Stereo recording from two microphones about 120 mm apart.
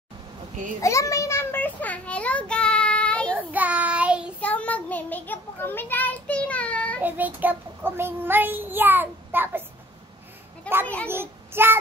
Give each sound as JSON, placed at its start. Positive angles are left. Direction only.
{"t": 0.7, "sound": "a sound", "side_deg": 25}
{"t": 3.5, "sound": "child singing", "side_deg": -10}
{"t": 4.4, "sound": "child singing", "side_deg": 10}
{"t": 7.0, "sound": "child singing", "side_deg": -15}
{"t": 10.7, "sound": "a child's voice", "side_deg": 10}
{"t": 11.1, "sound": "child singing", "side_deg": -20}